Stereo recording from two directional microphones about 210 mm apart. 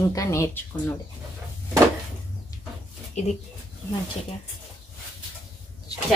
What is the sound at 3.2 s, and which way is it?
Speech, 35° left (ahead or behind).